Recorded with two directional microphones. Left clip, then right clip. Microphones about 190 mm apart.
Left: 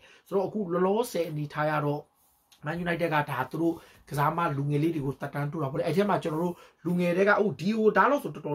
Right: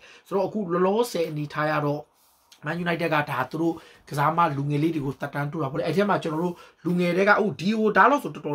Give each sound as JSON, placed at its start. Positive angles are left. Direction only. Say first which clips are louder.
{"t": 0.3, "sound": "speech", "louder": "right 3 dB", "side_deg": -5}